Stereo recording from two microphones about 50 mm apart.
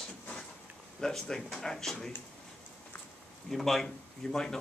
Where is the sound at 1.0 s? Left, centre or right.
Centre.